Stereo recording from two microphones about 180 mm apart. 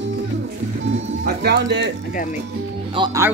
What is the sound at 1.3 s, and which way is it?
Speech, 60° right (ahead or behind).